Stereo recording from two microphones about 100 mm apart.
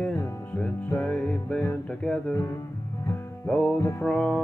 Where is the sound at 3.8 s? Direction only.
25° left (ahead or behind).